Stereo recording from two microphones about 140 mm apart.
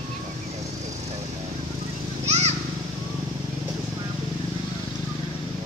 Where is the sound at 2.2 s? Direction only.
50° right (ahead or behind).